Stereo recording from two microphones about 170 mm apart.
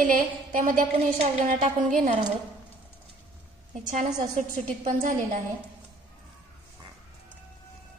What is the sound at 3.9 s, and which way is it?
Speech, 45° right (ahead or behind).